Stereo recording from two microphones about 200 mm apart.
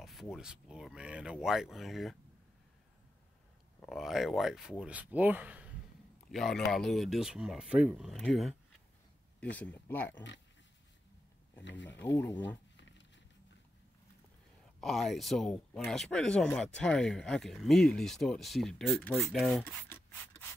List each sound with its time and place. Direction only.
0.0 s speech: centre (ahead or behind)
3.8 s speech: centre (ahead or behind)
12.7 s a sound: 65° left (ahead or behind)
14.8 s speech: centre (ahead or behind)